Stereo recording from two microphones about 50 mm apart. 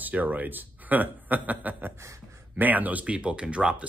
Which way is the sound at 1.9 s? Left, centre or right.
Right.